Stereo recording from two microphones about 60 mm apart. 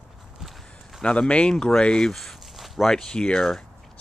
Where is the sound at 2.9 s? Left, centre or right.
Centre.